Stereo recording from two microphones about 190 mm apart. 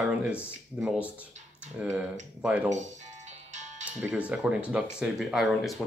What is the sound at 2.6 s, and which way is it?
Music, 40° right (ahead or behind).